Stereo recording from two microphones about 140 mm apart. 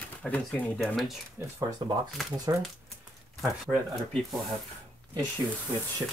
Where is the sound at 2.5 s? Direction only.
25° right (ahead or behind).